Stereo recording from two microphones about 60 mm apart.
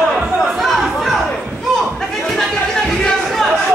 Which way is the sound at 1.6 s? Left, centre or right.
Centre.